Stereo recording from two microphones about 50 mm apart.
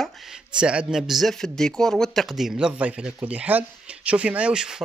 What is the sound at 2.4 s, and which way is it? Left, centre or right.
Speech, centre.